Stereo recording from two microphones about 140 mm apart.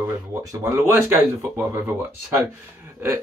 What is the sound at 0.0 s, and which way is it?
Speech, 20° right (ahead or behind).